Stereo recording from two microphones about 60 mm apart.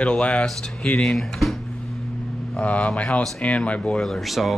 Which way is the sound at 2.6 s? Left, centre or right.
Left.